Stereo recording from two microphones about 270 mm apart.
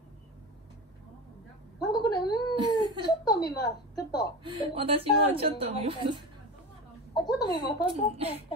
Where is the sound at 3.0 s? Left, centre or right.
Centre.